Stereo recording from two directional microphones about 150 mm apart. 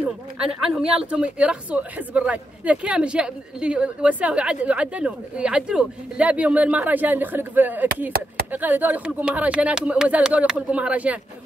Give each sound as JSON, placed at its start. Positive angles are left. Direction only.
{"t": 0.0, "sound": "speech", "side_deg": -5}
{"t": 8.1, "sound": "speech", "side_deg": -90}
{"t": 8.5, "sound": "speech", "side_deg": -10}